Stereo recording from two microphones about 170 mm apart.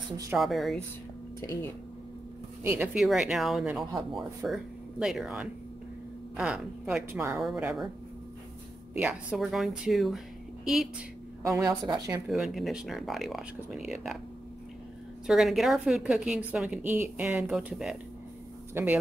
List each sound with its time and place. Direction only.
0.4 s a woman's voice: centre (ahead or behind)
1.4 s speech: 20° left (ahead or behind)
2.6 s a woman's voice: 15° right (ahead or behind)
7.4 s a woman's voice: 5° right (ahead or behind)
8.9 s a woman's voice: 10° right (ahead or behind)
11.4 s a woman's voice: 15° right (ahead or behind)
12.3 s a woman's voice: centre (ahead or behind)
15.2 s a woman's voice: centre (ahead or behind)
18.7 s speech: 15° right (ahead or behind)